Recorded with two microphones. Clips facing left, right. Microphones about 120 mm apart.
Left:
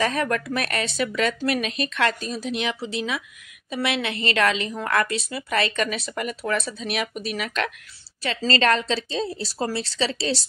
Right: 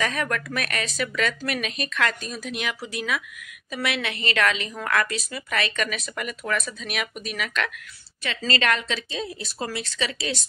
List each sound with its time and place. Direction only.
0.0 s a woman's voice: 30° left (ahead or behind)